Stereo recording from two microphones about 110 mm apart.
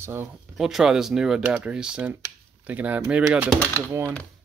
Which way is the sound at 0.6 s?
5° right (ahead or behind).